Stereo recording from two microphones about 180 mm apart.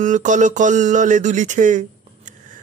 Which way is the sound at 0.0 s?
45° right (ahead or behind).